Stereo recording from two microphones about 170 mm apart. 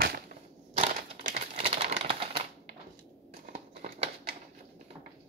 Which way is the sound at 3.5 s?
45° right (ahead or behind).